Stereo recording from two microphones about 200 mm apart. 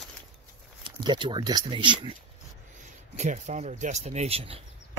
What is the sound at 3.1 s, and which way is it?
Speech, 35° right (ahead or behind).